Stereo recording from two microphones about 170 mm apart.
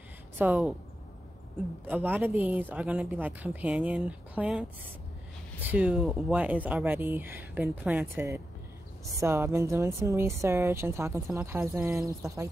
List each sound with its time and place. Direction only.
0.5 s speech: centre (ahead or behind)
1.9 s speech: 10° right (ahead or behind)
9.2 s speech: 15° right (ahead or behind)